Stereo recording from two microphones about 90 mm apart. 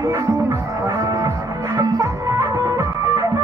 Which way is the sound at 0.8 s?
40° right (ahead or behind).